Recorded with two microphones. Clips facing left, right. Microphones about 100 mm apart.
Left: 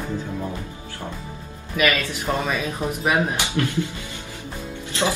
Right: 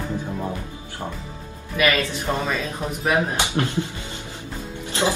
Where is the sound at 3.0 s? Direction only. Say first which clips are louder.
Even; 15° left (ahead or behind).